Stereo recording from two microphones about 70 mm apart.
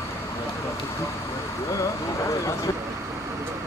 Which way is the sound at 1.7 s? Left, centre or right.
Left.